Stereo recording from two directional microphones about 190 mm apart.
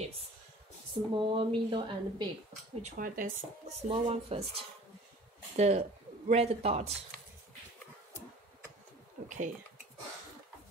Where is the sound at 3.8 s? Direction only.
30° right (ahead or behind).